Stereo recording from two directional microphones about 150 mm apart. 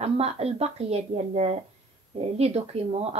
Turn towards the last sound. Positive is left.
turn(degrees=-45)  # may be behind; listen again after turning